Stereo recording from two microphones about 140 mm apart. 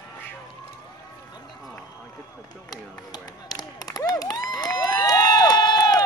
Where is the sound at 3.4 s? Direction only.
25° left (ahead or behind).